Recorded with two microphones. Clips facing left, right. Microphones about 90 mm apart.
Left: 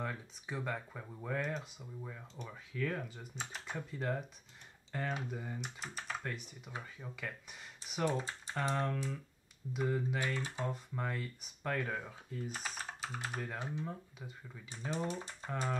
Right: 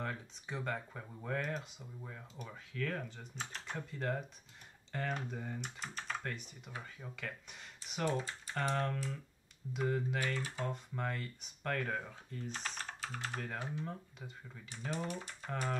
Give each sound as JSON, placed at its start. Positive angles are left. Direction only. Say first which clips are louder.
{"t": 0.0, "sound": "speech", "louder": "left 1 dB", "side_deg": 5}
{"t": 8.1, "sound": "speech", "louder": "even", "side_deg": 25}
{"t": 8.7, "sound": "speech", "louder": "left 1 dB", "side_deg": 5}
{"t": 12.0, "sound": "typing", "louder": "left 2 dB", "side_deg": 10}
{"t": 13.8, "sound": "speech", "louder": "left 1 dB", "side_deg": 0}
{"t": 14.9, "sound": "speech", "louder": "left 2 dB", "side_deg": 20}